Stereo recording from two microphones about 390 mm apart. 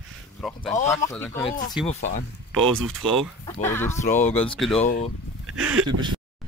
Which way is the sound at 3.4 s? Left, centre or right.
Centre.